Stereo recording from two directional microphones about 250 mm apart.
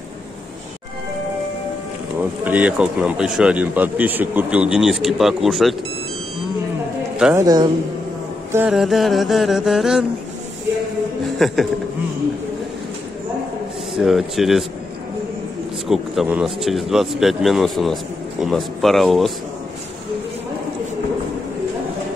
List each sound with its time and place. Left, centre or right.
2.4 s speech: centre
7.2 s a man's voice: centre
8.5 s speech: centre
11.3 s speech: centre
13.9 s speech: centre
15.9 s speech: centre